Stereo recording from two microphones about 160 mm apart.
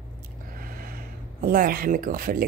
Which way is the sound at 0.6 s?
65° right (ahead or behind).